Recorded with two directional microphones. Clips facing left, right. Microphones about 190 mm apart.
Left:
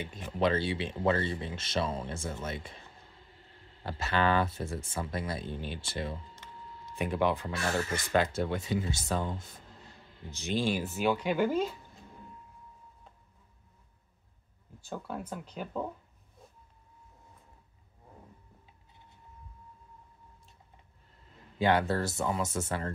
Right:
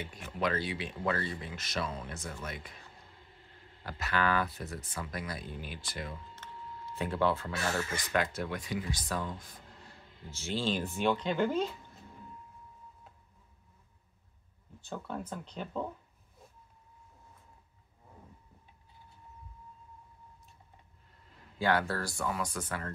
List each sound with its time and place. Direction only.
0.0 s speech: 20° left (ahead or behind)
3.8 s speech: 25° left (ahead or behind)
7.0 s speech: 15° left (ahead or behind)
14.9 s speech: 10° left (ahead or behind)
21.5 s speech: 20° left (ahead or behind)